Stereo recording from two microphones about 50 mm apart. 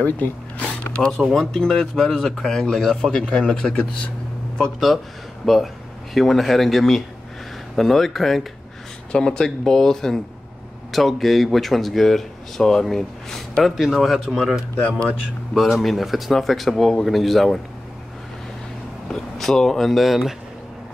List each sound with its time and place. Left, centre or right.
0.0 s speech: left
0.9 s a man's voice: centre
4.7 s speech: centre
9.1 s a man's voice: centre
14.9 s speech: left
15.5 s speech: centre
19.0 s speech: centre